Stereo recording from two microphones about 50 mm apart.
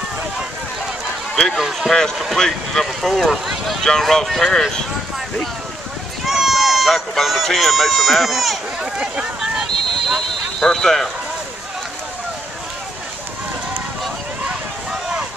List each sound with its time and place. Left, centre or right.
1.3 s speech: centre
2.3 s speech: centre
3.0 s speech: centre
3.8 s speech: centre
6.2 s speech: centre
8.9 s a sound: centre
9.7 s a sound: centre
10.6 s speech: centre
14.9 s boat: centre